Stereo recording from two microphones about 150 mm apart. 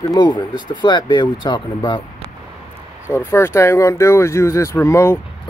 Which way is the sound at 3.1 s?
15° left (ahead or behind).